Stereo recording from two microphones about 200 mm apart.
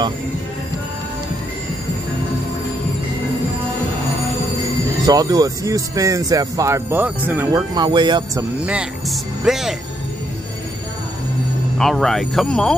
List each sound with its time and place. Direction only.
5.0 s speech: 20° right (ahead or behind)
8.5 s speech: 5° right (ahead or behind)
11.8 s speech: centre (ahead or behind)